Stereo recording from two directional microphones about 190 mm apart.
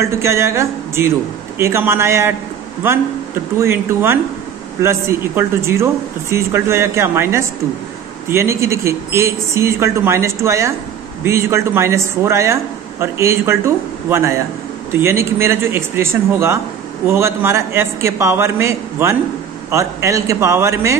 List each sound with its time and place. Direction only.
0.0 s a man's voice: 15° right (ahead or behind)
3.5 s a man's voice: 15° right (ahead or behind)